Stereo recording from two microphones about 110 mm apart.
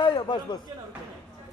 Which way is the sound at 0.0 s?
45° left (ahead or behind).